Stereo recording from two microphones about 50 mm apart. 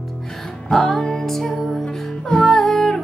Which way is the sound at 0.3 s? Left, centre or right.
Centre.